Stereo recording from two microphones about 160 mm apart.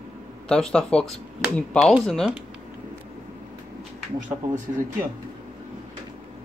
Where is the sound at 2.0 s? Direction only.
Centre (ahead or behind).